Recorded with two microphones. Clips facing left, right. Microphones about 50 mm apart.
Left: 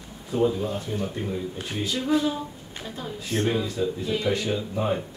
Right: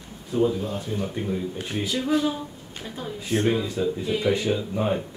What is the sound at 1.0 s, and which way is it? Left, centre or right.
Speech, centre.